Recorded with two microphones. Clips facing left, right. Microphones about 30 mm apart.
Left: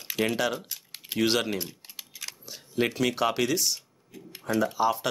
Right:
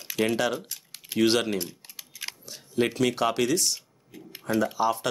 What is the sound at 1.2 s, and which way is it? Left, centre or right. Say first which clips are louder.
Speech: right 3 dB; centre.